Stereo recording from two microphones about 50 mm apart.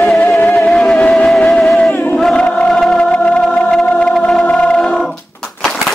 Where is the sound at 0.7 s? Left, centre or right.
Centre.